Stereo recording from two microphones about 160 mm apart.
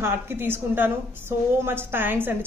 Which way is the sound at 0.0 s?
15° right (ahead or behind).